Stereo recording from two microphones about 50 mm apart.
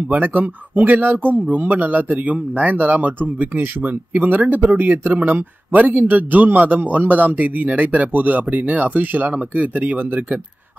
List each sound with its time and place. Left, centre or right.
0.1 s speech: right